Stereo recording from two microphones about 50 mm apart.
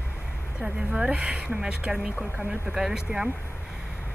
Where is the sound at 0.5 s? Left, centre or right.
Centre.